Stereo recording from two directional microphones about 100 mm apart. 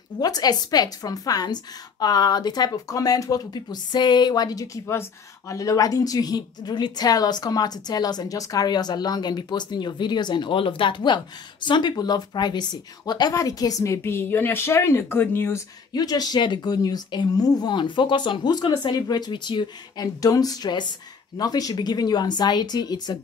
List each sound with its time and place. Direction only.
0.2 s a woman's voice: 40° left (ahead or behind); by 15.6 s 20° left (ahead or behind)
15.9 s a woman's voice: 40° left (ahead or behind)
20.2 s a woman's voice: 40° left (ahead or behind)